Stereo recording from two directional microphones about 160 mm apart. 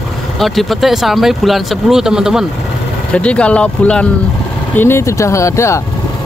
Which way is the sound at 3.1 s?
5° left (ahead or behind).